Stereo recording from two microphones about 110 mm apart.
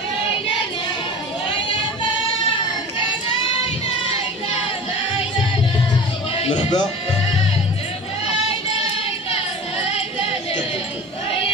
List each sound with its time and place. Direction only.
6.3 s music: 55° left (ahead or behind)